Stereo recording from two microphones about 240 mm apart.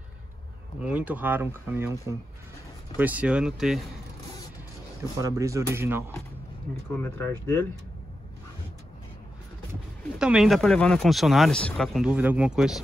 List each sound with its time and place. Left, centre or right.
0.8 s speech: centre
5.2 s speech: centre
7.0 s speech: centre
10.1 s speech: centre